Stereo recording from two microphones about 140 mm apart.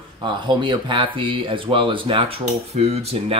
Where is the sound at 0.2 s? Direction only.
35° right (ahead or behind).